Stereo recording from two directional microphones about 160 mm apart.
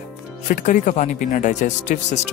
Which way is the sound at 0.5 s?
55° left (ahead or behind).